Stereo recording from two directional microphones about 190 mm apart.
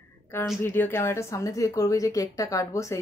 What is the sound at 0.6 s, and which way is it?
Speech, 10° left (ahead or behind).